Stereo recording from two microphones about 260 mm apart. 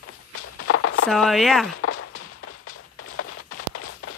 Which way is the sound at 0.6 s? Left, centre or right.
Left.